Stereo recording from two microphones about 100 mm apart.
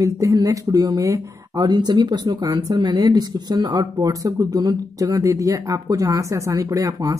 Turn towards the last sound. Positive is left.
turn(degrees=-35)  # may be behind; listen again after turning